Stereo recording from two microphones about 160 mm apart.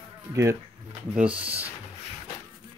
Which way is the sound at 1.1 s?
10° right (ahead or behind).